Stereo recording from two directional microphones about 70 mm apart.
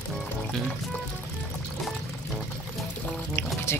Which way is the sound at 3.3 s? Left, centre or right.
Left.